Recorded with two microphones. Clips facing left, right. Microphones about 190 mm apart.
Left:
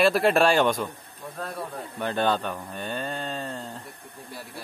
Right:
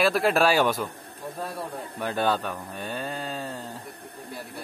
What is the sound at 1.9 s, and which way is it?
Cattle, 5° right (ahead or behind).